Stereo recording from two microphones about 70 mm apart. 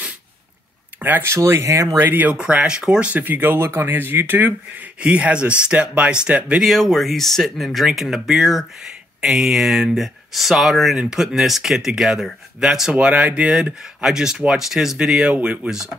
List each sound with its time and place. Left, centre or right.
1.0 s speech: right
1.3 s speech: right
2.0 s speech: right
2.3 s speech: centre
6.6 s speech: centre